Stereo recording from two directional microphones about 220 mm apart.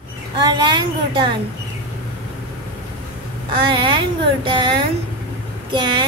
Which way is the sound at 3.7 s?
20° right (ahead or behind).